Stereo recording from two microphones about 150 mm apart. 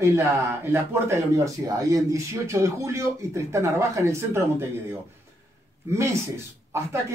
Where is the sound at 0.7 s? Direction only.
15° right (ahead or behind).